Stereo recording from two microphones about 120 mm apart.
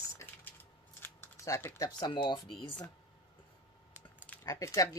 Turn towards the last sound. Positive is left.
turn(degrees=25)  # may be behind; listen again after turning